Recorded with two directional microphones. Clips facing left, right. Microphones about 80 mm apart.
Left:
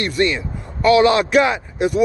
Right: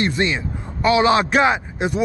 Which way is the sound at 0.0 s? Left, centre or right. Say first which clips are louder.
Left 1 dB; right.